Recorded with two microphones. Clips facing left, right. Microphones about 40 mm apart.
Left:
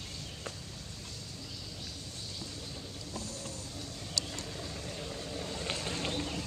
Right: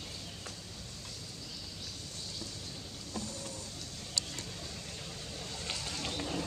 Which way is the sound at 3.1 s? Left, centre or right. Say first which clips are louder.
Right 2 dB; centre.